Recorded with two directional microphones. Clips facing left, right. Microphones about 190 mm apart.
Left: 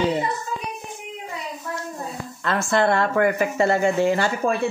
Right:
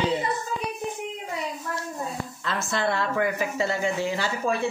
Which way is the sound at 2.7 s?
55° left (ahead or behind).